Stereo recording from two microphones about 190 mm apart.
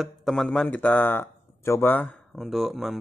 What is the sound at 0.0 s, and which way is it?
Speech, centre (ahead or behind).